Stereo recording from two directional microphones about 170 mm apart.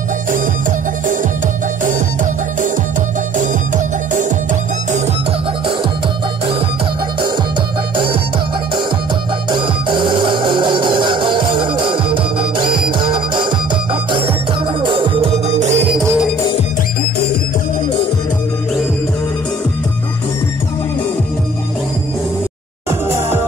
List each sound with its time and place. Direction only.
0.3 s music: 50° right (ahead or behind)
3.3 s music: 50° right (ahead or behind)
7.9 s music: 30° right (ahead or behind)
9.5 s music: 30° right (ahead or behind)
14.8 s music: 30° right (ahead or behind)
22.8 s music: 15° right (ahead or behind)